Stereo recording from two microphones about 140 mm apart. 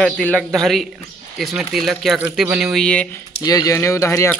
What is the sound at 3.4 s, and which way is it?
Speech, 25° left (ahead or behind).